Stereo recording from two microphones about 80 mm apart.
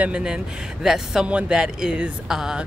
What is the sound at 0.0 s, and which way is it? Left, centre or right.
A woman's voice, centre.